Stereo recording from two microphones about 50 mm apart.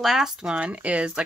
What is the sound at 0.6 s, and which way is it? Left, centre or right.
Speech, right.